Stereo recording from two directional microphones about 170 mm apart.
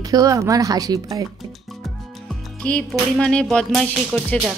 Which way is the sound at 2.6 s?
5° left (ahead or behind).